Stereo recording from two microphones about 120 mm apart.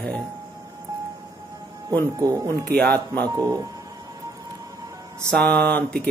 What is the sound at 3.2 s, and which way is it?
Speech, 35° right (ahead or behind).